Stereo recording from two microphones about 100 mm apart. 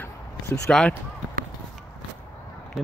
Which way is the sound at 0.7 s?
5° left (ahead or behind).